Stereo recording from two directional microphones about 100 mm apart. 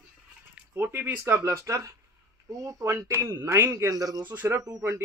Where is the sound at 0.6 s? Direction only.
20° right (ahead or behind); by 4.3 s 40° right (ahead or behind).